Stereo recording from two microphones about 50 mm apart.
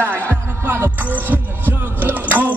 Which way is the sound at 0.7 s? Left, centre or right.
Right.